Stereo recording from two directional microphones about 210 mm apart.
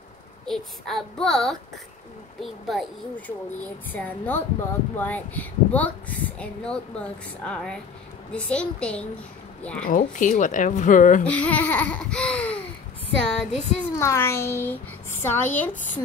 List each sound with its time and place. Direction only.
0.5 s a child's voice: centre (ahead or behind)
9.8 s speech: 40° left (ahead or behind)
11.2 s a child's voice: 5° left (ahead or behind)